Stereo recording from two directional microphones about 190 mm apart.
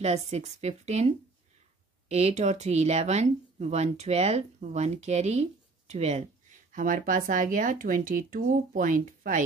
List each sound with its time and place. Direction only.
0.0 s speech: 35° right (ahead or behind)